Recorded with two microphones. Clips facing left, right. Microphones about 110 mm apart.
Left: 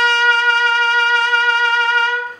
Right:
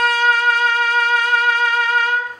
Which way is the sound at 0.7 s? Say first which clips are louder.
Left 2 dB; 75° left (ahead or behind).